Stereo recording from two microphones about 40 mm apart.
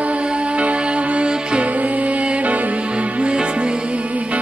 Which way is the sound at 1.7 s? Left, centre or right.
Right.